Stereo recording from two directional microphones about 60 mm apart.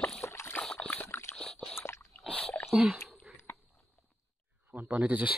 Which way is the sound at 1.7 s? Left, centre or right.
Left.